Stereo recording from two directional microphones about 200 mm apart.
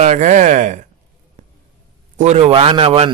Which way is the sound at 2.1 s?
35° right (ahead or behind).